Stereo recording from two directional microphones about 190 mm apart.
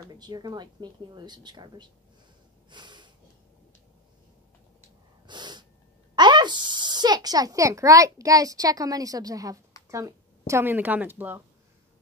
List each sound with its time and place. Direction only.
0.2 s speech: 20° right (ahead or behind)
2.7 s a sound: 25° right (ahead or behind)
5.2 s sneeze: 25° right (ahead or behind)
6.1 s speech: 25° right (ahead or behind)